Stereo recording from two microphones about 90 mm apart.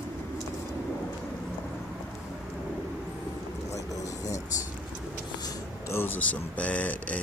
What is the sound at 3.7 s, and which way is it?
Vehicle, 40° left (ahead or behind).